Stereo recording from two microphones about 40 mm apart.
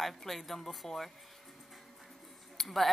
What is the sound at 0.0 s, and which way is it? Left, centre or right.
Speech, centre.